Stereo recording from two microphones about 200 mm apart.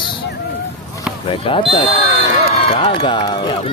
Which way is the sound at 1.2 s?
25° left (ahead or behind).